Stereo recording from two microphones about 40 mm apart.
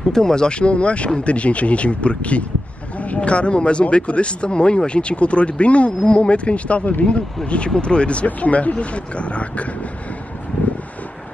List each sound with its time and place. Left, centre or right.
0.1 s speech: centre; by 9.7 s left